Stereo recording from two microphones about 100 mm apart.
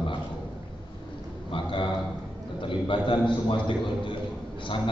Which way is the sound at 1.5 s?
55° left (ahead or behind).